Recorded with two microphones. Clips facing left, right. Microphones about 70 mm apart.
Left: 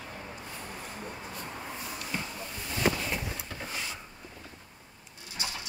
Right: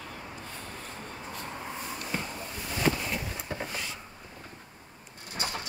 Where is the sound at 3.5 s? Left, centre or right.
Right.